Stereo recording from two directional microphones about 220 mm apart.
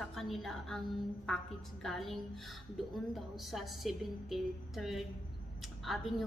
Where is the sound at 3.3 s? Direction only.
Centre (ahead or behind).